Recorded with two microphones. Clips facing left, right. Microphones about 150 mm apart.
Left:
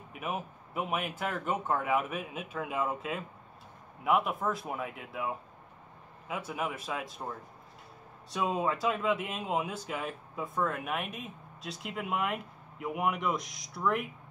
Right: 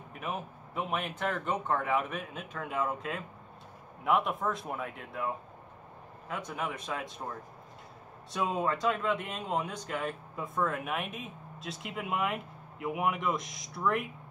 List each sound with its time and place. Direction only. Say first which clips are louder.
0.1 s speech: left 1 dB; 5° left (ahead or behind)